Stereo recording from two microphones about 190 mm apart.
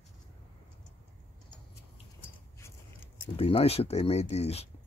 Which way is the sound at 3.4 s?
30° left (ahead or behind).